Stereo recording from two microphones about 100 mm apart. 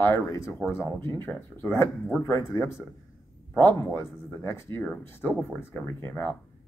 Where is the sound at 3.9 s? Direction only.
25° left (ahead or behind).